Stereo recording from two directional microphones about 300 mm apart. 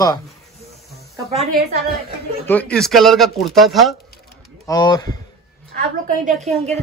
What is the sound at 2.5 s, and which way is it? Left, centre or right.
Speech, centre.